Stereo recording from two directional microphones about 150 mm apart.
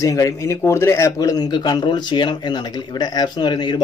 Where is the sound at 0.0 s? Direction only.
20° left (ahead or behind).